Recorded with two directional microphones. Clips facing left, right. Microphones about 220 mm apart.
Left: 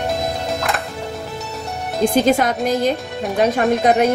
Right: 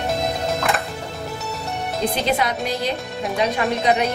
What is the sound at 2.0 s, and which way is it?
A woman's voice, 45° left (ahead or behind).